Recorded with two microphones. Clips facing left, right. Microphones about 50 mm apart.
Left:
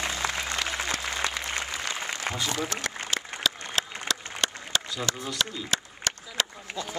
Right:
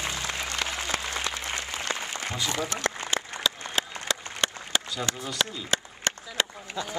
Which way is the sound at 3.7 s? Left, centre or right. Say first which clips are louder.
Right 1 dB; right.